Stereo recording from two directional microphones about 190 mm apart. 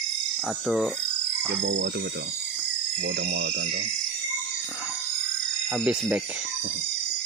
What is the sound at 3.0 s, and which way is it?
Speech, 70° right (ahead or behind).